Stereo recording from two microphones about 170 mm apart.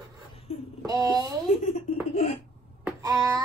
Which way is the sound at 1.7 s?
35° left (ahead or behind).